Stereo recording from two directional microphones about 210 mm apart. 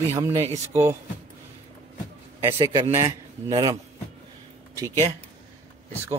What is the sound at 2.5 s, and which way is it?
A man's voice, 25° right (ahead or behind).